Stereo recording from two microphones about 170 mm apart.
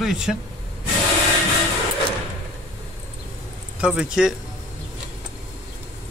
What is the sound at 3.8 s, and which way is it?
Speech, 5° right (ahead or behind).